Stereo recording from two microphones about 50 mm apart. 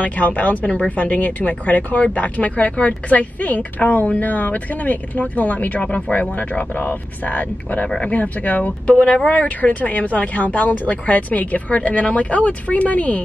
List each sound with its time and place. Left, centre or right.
0.0 s speech: left
8.9 s speech: centre; by 13.2 s left